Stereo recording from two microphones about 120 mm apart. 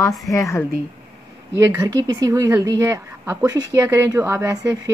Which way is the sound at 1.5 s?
20° right (ahead or behind).